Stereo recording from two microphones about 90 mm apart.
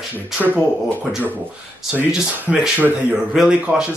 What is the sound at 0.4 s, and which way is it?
Speech, 10° left (ahead or behind).